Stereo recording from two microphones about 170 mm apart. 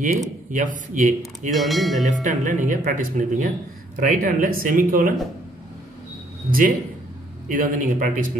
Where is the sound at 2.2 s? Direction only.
45° right (ahead or behind).